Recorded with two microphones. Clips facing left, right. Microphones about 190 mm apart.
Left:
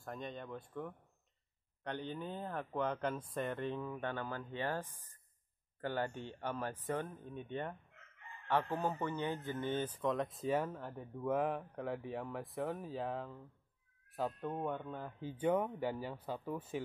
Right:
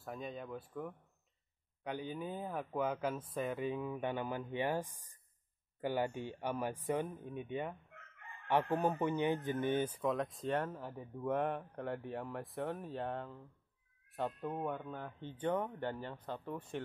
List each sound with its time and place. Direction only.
0.0 s speech: 5° right (ahead or behind)
10.1 s speech: centre (ahead or behind)